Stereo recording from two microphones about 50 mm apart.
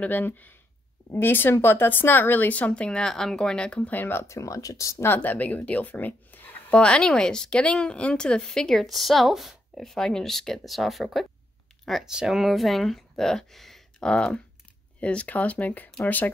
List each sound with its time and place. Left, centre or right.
0.2 s speech: left
3.1 s speech: centre
3.9 s speech: left
4.3 s speech: left
5.0 s speech: left
6.7 s speech: left
8.8 s speech: centre
9.8 s speech: centre
13.9 s speech: centre; by 15.9 s left